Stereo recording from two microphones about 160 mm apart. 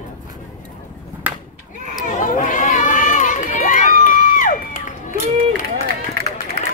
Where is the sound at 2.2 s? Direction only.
55° left (ahead or behind).